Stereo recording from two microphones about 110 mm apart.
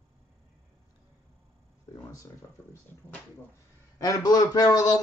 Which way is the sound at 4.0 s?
35° left (ahead or behind).